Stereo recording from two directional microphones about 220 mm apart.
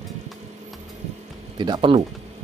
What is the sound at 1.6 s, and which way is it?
Speech, 20° right (ahead or behind).